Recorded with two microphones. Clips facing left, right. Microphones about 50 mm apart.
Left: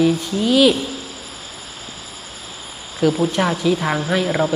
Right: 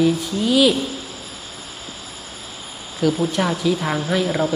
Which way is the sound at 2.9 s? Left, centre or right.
Centre.